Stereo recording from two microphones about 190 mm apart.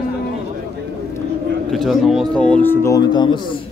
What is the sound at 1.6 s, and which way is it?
Speech, centre (ahead or behind).